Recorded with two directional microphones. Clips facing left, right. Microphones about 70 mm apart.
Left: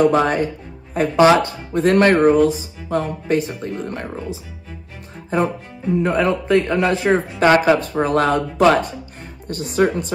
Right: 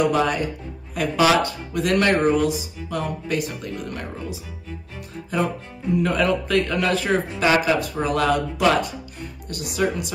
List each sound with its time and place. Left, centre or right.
0.0 s speech: left
7.4 s speech: left